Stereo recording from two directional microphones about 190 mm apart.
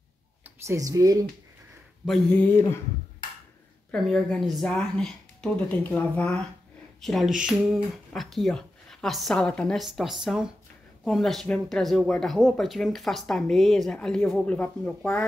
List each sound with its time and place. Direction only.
0.7 s speech: 20° right (ahead or behind)
2.0 s speech: 5° left (ahead or behind)
3.9 s speech: centre (ahead or behind)